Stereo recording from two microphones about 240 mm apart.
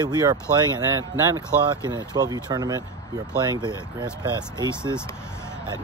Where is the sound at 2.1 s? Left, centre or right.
Centre.